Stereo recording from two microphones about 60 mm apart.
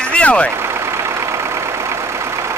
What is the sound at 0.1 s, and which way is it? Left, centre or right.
Vehicle, left.